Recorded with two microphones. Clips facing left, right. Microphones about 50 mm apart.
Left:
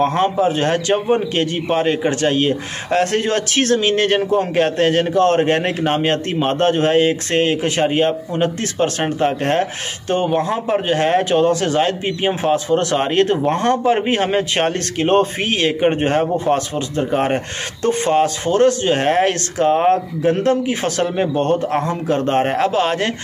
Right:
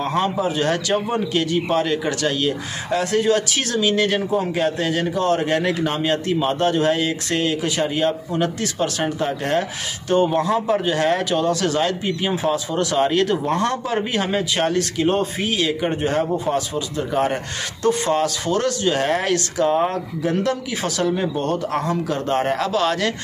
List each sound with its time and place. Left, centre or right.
0.0 s a man's voice: left